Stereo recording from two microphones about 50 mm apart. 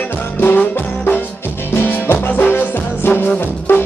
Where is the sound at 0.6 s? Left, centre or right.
Left.